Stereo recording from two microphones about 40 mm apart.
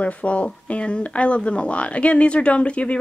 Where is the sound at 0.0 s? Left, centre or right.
Left.